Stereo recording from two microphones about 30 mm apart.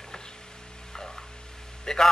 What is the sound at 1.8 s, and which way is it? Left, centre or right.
Speech, centre.